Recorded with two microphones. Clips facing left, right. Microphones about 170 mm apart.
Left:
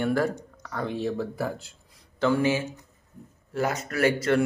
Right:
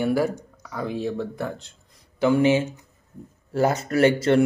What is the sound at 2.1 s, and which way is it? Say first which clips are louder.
Speech: right 5 dB; 15° right (ahead or behind).